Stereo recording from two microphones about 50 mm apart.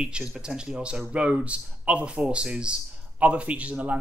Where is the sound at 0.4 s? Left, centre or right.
Centre.